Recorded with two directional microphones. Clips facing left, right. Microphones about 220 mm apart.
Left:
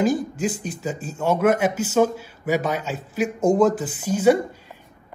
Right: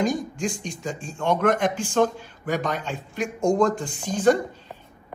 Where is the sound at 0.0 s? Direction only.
5° left (ahead or behind).